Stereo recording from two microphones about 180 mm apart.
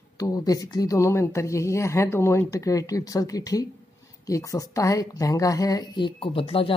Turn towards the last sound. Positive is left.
turn(degrees=30)  # may be behind; listen again after turning